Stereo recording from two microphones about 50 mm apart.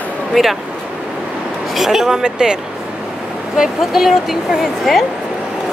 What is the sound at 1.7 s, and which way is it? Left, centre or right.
Speech, centre.